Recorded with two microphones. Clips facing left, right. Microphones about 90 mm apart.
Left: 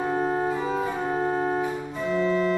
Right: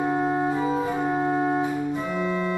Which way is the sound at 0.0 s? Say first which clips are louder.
Right 1 dB; 10° right (ahead or behind).